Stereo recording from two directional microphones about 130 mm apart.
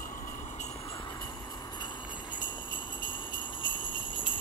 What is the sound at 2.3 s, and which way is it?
Jingle bell, 35° left (ahead or behind).